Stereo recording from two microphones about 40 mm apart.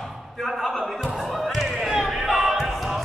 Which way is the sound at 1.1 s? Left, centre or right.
Centre.